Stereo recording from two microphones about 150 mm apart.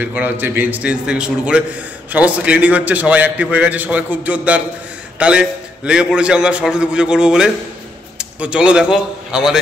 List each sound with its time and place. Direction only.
0.0 s a man's voice: 10° right (ahead or behind)